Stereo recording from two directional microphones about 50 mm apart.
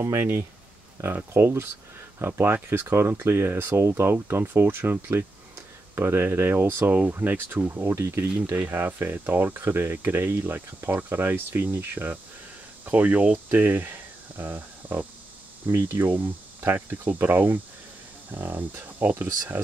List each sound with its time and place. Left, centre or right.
0.0 s speech: right
1.1 s speech: right
5.9 s speech: right
7.1 s speech: right
8.6 s speech: right